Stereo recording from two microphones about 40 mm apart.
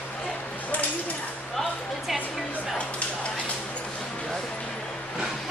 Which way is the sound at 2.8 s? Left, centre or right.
Left.